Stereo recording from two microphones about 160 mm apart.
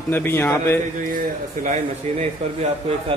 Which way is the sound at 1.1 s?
55° right (ahead or behind).